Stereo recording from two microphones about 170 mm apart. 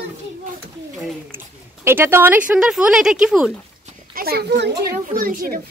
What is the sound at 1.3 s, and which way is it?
Speech, 15° right (ahead or behind).